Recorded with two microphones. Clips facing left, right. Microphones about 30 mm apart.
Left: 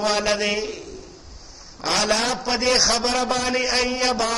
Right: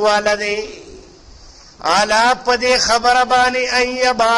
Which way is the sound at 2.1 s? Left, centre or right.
Right.